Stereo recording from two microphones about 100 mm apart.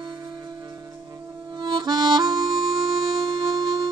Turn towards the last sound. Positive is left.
turn(degrees=-45)  # may be behind; listen again after turning